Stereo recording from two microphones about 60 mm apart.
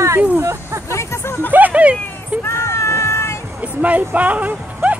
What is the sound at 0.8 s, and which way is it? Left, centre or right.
Speech, left.